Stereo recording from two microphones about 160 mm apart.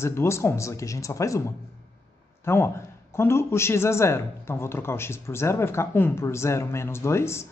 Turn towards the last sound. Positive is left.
turn(degrees=15)  # may be behind; listen again after turning